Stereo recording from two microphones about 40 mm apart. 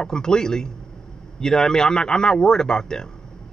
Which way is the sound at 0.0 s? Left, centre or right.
Centre.